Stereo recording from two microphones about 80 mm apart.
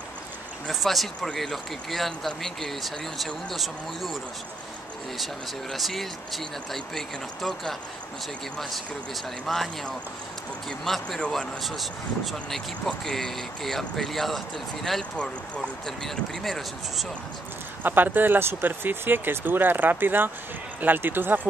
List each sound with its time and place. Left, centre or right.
0.7 s speech: centre
11.6 s speech: centre
17.8 s speech: right